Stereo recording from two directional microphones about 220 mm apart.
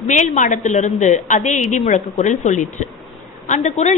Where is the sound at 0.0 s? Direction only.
35° left (ahead or behind).